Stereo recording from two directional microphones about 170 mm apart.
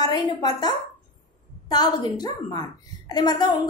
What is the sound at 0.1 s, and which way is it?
A woman's voice, 25° left (ahead or behind).